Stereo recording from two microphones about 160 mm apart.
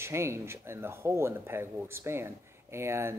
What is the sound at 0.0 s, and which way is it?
Speech, 15° right (ahead or behind).